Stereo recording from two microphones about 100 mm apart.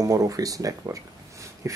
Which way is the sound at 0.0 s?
35° right (ahead or behind).